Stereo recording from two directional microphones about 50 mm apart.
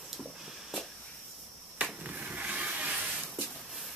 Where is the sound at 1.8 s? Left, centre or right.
Right.